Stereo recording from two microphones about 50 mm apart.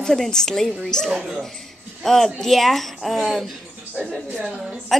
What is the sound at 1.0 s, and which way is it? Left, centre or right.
Speech, centre.